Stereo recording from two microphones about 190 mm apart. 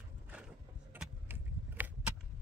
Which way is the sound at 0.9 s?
10° right (ahead or behind).